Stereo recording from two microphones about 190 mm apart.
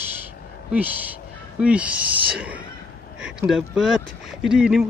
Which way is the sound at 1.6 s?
5° right (ahead or behind).